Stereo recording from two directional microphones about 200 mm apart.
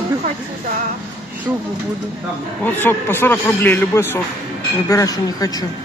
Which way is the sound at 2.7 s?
10° left (ahead or behind).